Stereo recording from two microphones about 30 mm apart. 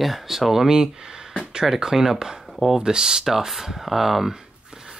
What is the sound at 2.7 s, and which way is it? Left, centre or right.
Speech, centre.